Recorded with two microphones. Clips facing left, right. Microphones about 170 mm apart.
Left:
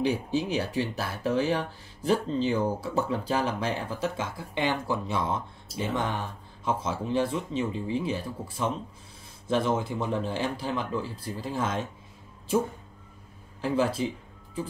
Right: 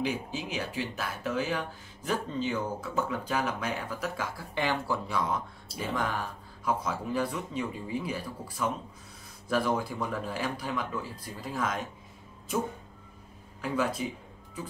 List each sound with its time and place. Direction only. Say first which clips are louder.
0.0 s speech: left 6 dB; 35° left (ahead or behind)
13.6 s speech: left 4 dB; 30° left (ahead or behind)